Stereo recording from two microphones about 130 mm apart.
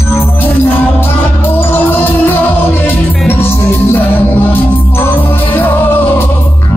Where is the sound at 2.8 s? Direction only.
15° left (ahead or behind).